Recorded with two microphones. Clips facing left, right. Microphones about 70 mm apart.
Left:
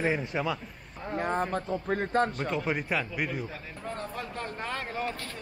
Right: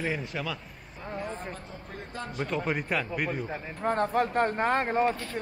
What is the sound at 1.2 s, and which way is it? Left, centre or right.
A man's voice, left.